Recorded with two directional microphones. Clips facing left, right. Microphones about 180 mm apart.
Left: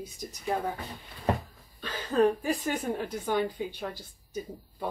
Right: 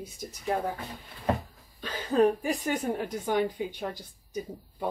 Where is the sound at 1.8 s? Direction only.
15° right (ahead or behind).